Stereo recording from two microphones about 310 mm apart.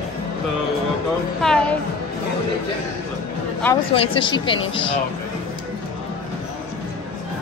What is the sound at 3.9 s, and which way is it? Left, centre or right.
Speech, centre.